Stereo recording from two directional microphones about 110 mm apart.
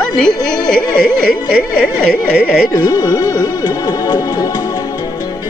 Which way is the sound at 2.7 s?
40° left (ahead or behind).